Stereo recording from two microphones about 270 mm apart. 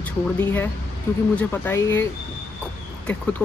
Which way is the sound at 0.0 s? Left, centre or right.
Centre.